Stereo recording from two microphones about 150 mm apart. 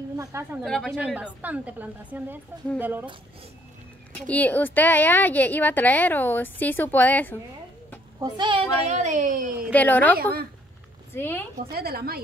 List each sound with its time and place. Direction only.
0.2 s a woman's voice: 20° right (ahead or behind)
0.7 s a woman's voice: centre (ahead or behind)
4.3 s a woman's voice: 10° left (ahead or behind)
8.2 s a child's voice: 30° right (ahead or behind)
8.8 s a woman's voice: 50° right (ahead or behind)
9.7 s a woman's voice: 10° left (ahead or behind)
11.1 s a woman's voice: 15° left (ahead or behind)
11.7 s a woman's voice: 90° right